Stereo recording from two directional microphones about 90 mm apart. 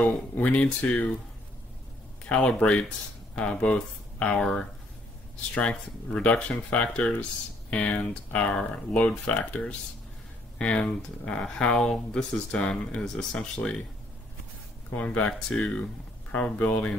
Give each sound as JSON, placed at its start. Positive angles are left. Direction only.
{"t": 0.0, "sound": "speech", "side_deg": 15}
{"t": 2.2, "sound": "speech", "side_deg": 10}
{"t": 15.0, "sound": "speech", "side_deg": 15}